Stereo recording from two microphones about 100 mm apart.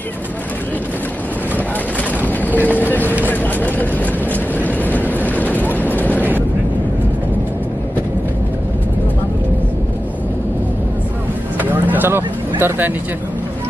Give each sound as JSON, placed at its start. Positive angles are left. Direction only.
{"t": 2.6, "sound": "vehicle", "side_deg": 15}
{"t": 11.5, "sound": "vehicle", "side_deg": -20}